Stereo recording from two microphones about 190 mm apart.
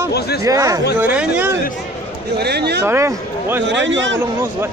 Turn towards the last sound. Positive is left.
turn(degrees=-75)  # may be behind; listen again after turning